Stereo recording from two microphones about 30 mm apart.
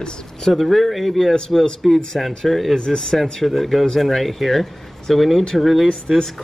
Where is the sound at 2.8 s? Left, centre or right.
Left.